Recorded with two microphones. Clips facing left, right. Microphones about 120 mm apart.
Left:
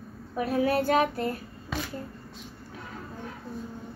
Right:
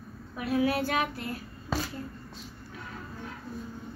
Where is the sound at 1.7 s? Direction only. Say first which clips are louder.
Right 2 dB; 35° right (ahead or behind).